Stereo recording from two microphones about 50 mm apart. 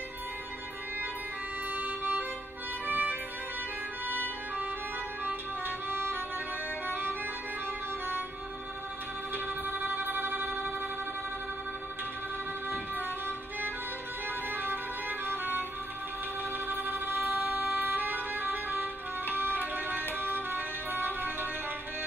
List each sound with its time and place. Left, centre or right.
1.8 s music: right
5.9 s music: right
6.9 s organ: right
9.3 s music: right
12.6 s music: right
14.5 s music: right